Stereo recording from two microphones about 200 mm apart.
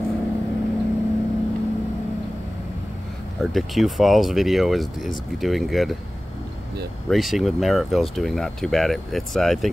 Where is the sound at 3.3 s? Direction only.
Centre (ahead or behind).